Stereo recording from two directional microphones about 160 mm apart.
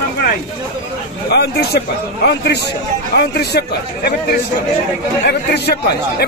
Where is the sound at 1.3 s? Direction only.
85° left.